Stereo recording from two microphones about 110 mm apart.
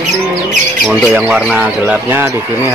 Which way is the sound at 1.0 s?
10° right (ahead or behind).